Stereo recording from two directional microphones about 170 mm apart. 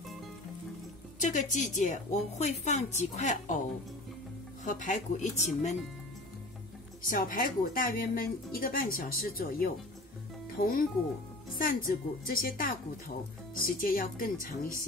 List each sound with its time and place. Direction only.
1.2 s a woman's voice: 45° left (ahead or behind)
4.6 s a woman's voice: 50° left (ahead or behind)
7.0 s a woman's voice: 55° left (ahead or behind)
13.7 s a woman's voice: 55° left (ahead or behind)